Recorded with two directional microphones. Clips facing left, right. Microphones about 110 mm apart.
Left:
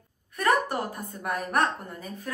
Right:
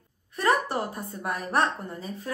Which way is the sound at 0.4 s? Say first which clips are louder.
Even; 20° right (ahead or behind).